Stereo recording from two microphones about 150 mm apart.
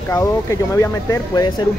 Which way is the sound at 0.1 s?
20° left (ahead or behind).